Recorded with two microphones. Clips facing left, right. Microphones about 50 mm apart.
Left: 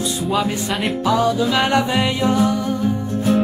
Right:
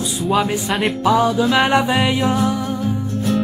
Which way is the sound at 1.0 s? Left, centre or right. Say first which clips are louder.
Right 2 dB; centre.